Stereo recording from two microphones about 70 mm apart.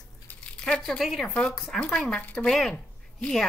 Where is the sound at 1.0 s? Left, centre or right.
Centre.